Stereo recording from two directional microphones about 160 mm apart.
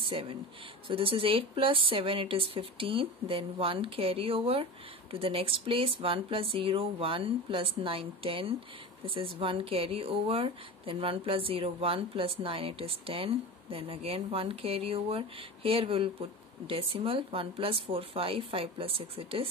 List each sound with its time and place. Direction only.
0.0 s speech: 35° right (ahead or behind)